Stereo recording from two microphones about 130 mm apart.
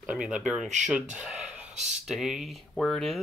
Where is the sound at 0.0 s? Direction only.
10° right (ahead or behind).